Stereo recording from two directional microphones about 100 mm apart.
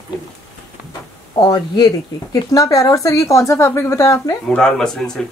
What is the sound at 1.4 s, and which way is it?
A woman's voice, 40° left (ahead or behind).